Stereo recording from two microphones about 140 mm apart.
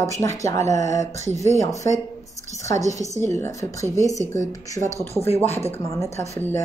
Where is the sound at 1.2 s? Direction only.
55° right (ahead or behind).